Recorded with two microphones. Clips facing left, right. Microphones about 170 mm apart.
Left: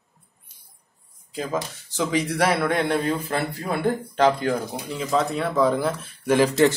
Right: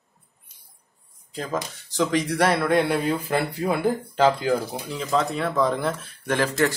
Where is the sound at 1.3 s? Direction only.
Centre (ahead or behind).